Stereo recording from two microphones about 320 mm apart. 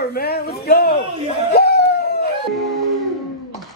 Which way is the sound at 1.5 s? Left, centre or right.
Left.